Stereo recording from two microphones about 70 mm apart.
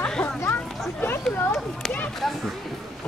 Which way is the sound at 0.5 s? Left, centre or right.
Left.